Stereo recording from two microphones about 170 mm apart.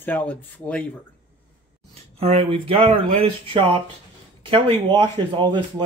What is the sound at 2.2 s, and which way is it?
Speech, 40° right (ahead or behind).